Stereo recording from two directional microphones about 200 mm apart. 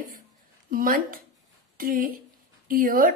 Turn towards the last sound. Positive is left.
turn(degrees=-45)  # may be behind; listen again after turning